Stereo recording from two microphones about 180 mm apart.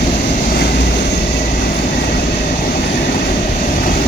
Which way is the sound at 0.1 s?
45° left (ahead or behind).